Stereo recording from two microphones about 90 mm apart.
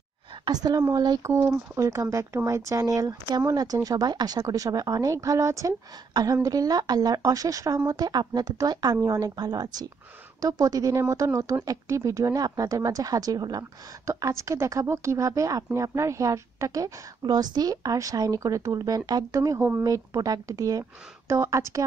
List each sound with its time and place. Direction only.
0.5 s speech: 45° right (ahead or behind)
1.2 s speech: 35° right (ahead or behind)
14.0 s speech: 35° right (ahead or behind)